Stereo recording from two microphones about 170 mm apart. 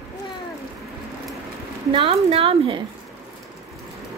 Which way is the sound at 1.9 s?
35° right (ahead or behind).